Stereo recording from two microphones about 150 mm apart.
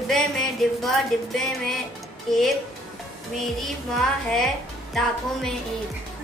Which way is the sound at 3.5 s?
Centre (ahead or behind).